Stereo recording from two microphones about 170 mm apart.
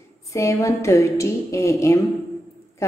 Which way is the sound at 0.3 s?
20° left (ahead or behind).